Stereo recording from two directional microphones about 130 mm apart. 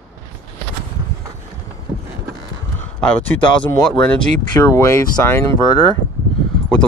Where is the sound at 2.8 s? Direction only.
10° left (ahead or behind).